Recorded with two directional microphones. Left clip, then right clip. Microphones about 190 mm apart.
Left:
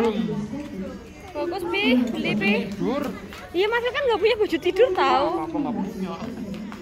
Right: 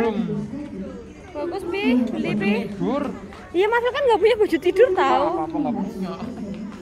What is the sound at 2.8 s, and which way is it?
Speech, 40° right (ahead or behind).